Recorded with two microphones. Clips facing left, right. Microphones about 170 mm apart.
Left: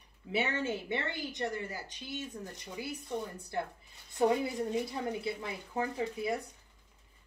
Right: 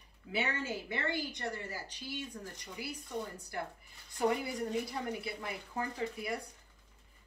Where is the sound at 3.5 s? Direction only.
25° left (ahead or behind).